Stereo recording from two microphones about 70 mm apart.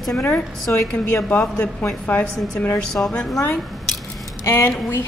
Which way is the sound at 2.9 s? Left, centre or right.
Centre.